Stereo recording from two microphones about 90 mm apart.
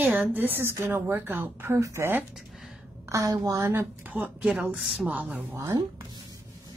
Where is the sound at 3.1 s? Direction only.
40° right (ahead or behind).